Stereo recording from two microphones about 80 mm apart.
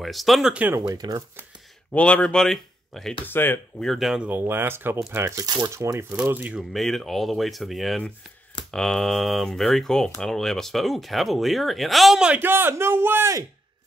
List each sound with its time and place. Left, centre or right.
0.0 s speech: centre
0.7 s speech: right
1.9 s speech: centre
3.3 s speech: left
3.8 s speech: centre
4.3 s speech: right
5.9 s speech: right
6.6 s speech: centre
12.4 s speech: right